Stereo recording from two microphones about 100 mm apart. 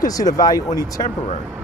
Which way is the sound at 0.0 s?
40° left (ahead or behind).